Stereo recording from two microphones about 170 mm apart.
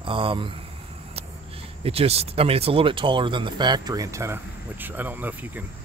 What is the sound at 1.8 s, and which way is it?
Speech, 35° right (ahead or behind).